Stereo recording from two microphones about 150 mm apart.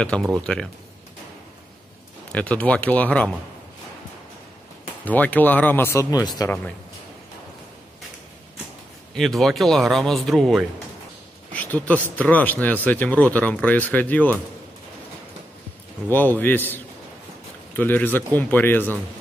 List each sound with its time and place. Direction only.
0.0 s speech: 5° left (ahead or behind)
2.3 s speech: 10° left (ahead or behind)
5.0 s speech: 10° left (ahead or behind)
5.9 s speech: 25° left (ahead or behind)
9.1 s speech: centre (ahead or behind)
16.1 s speech: 15° left (ahead or behind)